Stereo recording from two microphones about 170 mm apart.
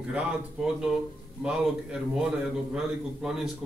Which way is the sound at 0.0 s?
5° right (ahead or behind).